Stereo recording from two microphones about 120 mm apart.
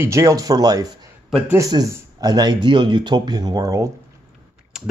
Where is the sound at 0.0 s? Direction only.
25° right (ahead or behind).